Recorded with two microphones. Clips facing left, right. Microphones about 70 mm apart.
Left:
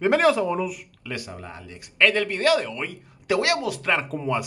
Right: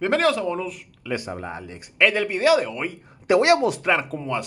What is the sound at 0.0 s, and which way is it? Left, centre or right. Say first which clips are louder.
Speech: left 1 dB; centre.